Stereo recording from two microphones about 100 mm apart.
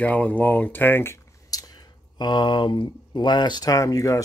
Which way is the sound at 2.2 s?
50° left (ahead or behind).